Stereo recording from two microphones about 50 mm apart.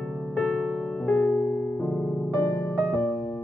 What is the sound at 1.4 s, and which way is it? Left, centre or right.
Music, left.